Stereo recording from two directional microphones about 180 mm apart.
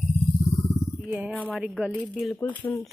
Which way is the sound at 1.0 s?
5° right (ahead or behind).